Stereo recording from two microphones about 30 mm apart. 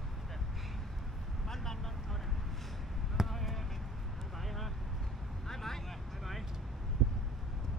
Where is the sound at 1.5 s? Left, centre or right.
Centre.